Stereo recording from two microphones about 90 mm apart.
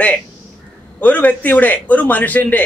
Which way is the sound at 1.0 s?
15° left (ahead or behind).